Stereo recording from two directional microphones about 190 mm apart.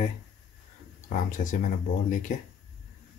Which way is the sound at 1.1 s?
40° left (ahead or behind).